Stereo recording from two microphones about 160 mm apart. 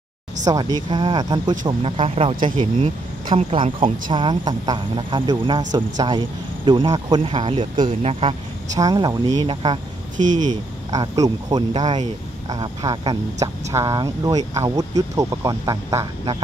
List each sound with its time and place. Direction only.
0.5 s speech: 25° right (ahead or behind)
8.7 s speech: 25° right (ahead or behind)
10.9 s speech: 20° right (ahead or behind)